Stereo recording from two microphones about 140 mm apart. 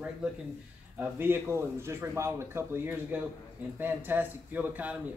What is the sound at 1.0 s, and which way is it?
Speech, 15° right (ahead or behind).